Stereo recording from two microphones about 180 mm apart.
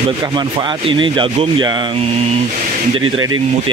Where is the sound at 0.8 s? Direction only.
25° right (ahead or behind).